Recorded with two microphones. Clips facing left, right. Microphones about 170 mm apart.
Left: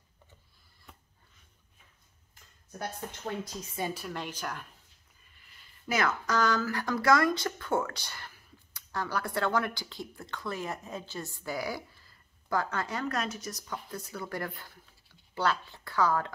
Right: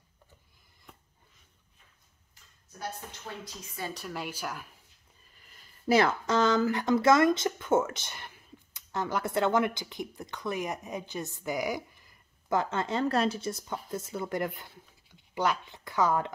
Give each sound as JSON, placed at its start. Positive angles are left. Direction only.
{"t": 3.9, "sound": "a woman's voice", "side_deg": 0}
{"t": 5.5, "sound": "speech", "side_deg": -35}